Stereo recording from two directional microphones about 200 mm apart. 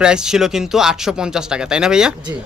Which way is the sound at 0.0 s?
5° right (ahead or behind).